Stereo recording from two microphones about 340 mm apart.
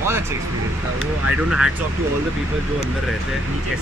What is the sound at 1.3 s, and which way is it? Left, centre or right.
Speech, centre.